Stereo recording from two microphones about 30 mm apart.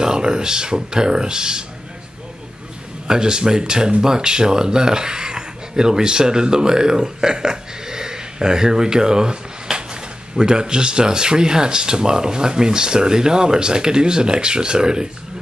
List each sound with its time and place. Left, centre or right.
0.0 s speech: right
3.1 s speech: right